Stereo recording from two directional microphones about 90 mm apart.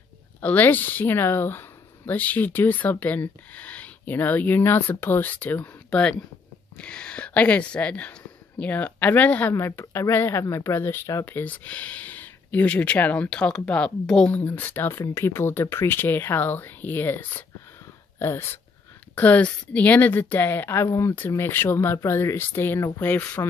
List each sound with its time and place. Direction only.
0.4 s speech: 20° left (ahead or behind)
11.2 s speech: 20° left (ahead or behind)
14.3 s speech: 20° left (ahead or behind)